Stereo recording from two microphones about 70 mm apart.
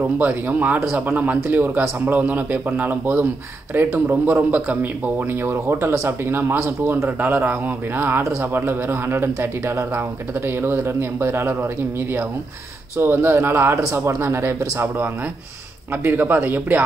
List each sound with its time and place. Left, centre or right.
0.0 s speech: right
5.4 s speech: right
12.9 s speech: right